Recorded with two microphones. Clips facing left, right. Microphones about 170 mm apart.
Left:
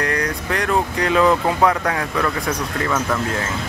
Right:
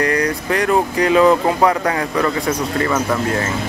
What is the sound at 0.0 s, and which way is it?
Speech, centre (ahead or behind).